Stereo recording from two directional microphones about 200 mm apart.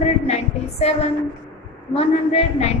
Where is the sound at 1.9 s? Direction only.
30° left (ahead or behind).